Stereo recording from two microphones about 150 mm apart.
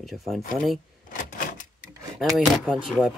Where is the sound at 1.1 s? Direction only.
65° left (ahead or behind).